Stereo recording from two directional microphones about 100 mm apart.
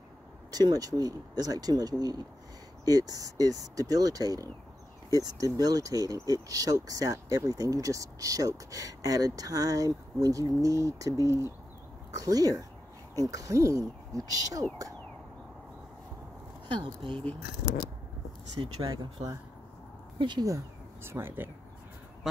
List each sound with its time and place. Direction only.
0.5 s speech: 40° right (ahead or behind)
16.6 s speech: 55° right (ahead or behind)
18.6 s speech: 55° right (ahead or behind)
20.2 s speech: 50° right (ahead or behind)
20.4 s speech: 30° right (ahead or behind)
22.2 s speech: 5° right (ahead or behind)